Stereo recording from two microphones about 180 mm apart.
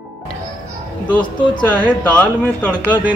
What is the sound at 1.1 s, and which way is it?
Speech, 25° left (ahead or behind).